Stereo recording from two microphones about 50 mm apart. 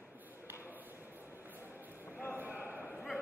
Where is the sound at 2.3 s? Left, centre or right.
Right.